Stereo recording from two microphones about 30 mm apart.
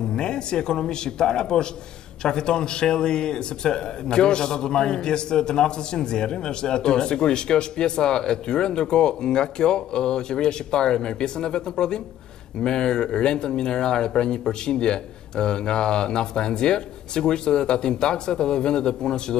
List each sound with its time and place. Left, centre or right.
0.1 s speech: left